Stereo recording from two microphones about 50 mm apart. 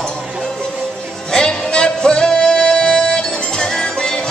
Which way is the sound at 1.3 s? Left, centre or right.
Centre.